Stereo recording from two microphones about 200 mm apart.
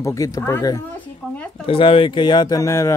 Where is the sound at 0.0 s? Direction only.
15° left (ahead or behind).